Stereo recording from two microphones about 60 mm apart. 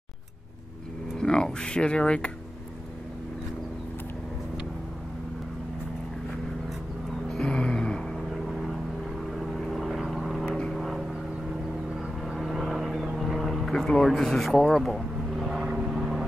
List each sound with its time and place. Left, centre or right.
1.1 s speech: centre
7.2 s a sound: centre
8.3 s vehicle: centre
12.3 s vehicle: centre
15.6 s vehicle: centre
15.9 s vehicle: centre